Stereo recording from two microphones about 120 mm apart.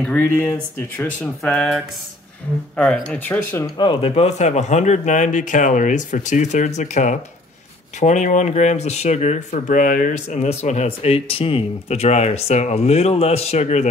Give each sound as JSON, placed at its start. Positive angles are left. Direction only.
{"t": 0.0, "sound": "speech", "side_deg": 15}
{"t": 1.4, "sound": "speech", "side_deg": 5}
{"t": 3.7, "sound": "speech", "side_deg": 40}